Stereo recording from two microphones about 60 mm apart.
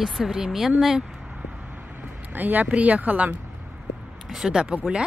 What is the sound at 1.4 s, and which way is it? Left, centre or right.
Vehicle, right.